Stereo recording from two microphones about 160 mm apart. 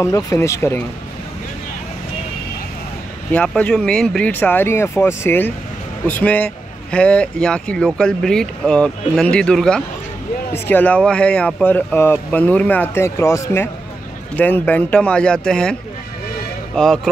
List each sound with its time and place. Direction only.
0.0 s speech: 20° left (ahead or behind)
3.3 s speech: 10° left (ahead or behind)
16.7 s speech: 5° left (ahead or behind)